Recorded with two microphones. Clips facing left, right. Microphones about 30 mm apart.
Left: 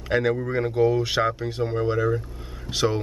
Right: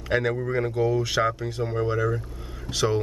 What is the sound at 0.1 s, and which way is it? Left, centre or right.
Speech, centre.